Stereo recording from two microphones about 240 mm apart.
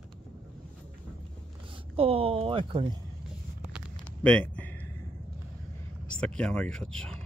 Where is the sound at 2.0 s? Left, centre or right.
Right.